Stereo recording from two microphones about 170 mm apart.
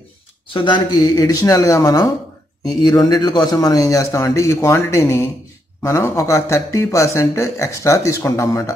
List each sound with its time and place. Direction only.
0.5 s a man's voice: 30° left (ahead or behind)